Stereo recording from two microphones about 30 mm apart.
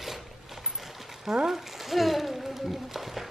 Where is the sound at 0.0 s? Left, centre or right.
Centre.